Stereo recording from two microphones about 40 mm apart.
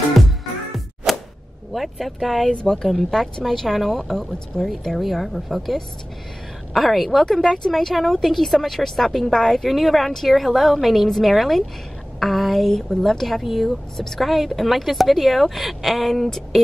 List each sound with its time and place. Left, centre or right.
1.1 s a sound: centre
1.7 s speech: centre
2.5 s speech: left
2.8 s a woman's voice: centre